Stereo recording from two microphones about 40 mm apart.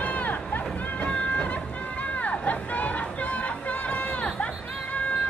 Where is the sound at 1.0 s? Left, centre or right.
Left.